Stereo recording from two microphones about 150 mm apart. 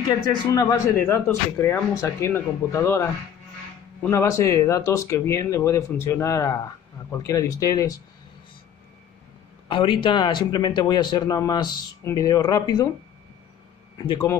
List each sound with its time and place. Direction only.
0.6 s speech: 20° left (ahead or behind)
4.1 s speech: 20° left (ahead or behind)
9.7 s speech: 35° left (ahead or behind)
13.9 s speech: 35° left (ahead or behind)